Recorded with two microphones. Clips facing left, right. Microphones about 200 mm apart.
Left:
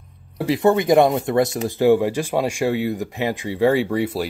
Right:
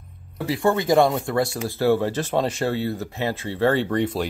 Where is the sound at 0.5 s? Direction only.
20° left (ahead or behind).